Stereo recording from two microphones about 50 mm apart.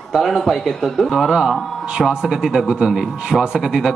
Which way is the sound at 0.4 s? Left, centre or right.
Centre.